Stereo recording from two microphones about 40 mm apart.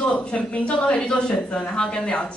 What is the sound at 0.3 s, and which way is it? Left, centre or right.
A woman's voice, left.